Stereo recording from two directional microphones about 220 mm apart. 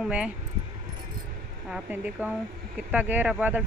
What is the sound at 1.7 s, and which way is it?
Speech, 5° right (ahead or behind).